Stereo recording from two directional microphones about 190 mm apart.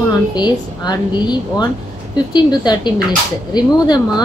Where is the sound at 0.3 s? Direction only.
20° left (ahead or behind).